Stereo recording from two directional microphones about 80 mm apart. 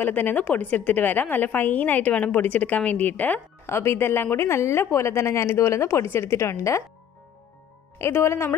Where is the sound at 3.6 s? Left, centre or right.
Left.